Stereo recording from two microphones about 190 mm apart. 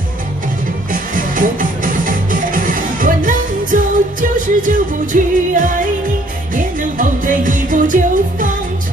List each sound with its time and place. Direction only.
0.9 s music: 45° right (ahead or behind)